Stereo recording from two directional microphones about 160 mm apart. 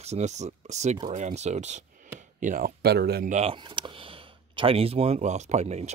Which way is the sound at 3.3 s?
45° right (ahead or behind).